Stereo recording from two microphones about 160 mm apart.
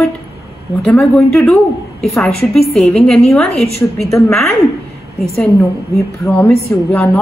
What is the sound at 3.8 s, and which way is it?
Speech, 10° left (ahead or behind).